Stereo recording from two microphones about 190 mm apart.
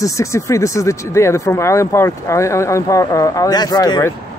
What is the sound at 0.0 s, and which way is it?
Speech, 15° left (ahead or behind).